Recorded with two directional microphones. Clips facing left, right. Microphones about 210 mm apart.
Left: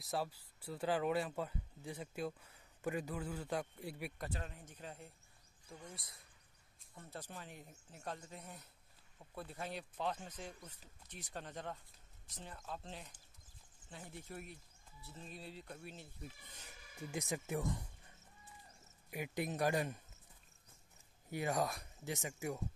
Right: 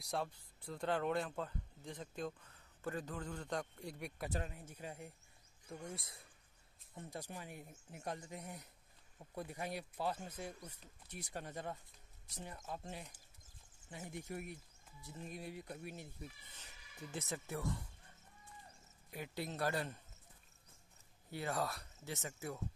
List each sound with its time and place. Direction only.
0.0 s speech: 5° left (ahead or behind)
4.5 s speech: 10° right (ahead or behind)
5.9 s speech: 25° right (ahead or behind)
7.0 s speech: 15° right (ahead or behind)
16.5 s speech: 10° left (ahead or behind)
19.0 s speech: 15° left (ahead or behind)
21.3 s speech: 15° left (ahead or behind)